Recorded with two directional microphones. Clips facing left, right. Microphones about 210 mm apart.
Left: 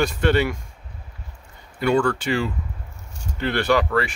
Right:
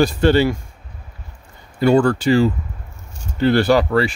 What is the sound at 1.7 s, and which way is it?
Speech, 35° right (ahead or behind).